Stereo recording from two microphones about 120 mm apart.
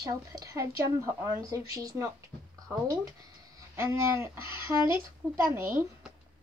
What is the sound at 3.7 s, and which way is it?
Speech, 20° right (ahead or behind).